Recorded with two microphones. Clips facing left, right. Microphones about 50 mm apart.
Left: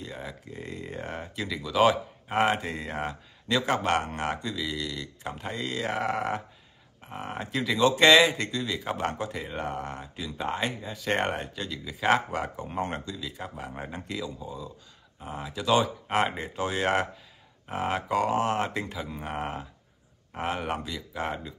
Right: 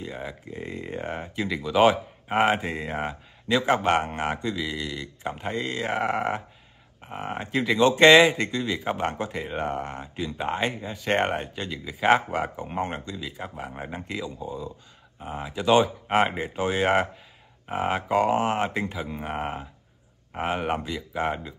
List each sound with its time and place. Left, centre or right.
0.0 s speech: centre